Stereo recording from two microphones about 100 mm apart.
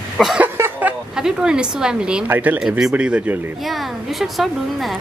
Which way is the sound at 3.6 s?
Centre (ahead or behind).